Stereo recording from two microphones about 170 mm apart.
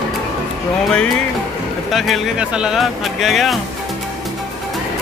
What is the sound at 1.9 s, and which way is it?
Speech, centre (ahead or behind).